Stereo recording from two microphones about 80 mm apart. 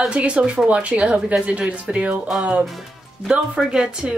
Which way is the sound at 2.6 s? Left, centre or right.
Centre.